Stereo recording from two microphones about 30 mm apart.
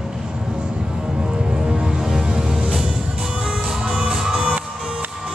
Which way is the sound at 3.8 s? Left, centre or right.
Right.